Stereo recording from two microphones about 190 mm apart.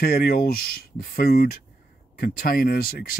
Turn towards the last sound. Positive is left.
turn(degrees=50)  # may be behind; listen again after turning